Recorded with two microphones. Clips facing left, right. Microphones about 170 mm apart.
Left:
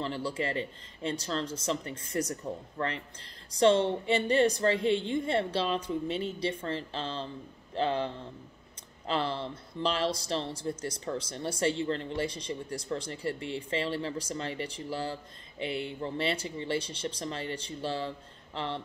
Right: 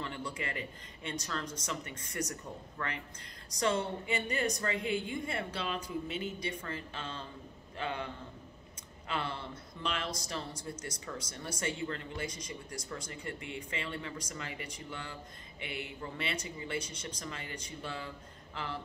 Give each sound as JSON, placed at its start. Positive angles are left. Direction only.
{"t": 0.0, "sound": "speech", "side_deg": 30}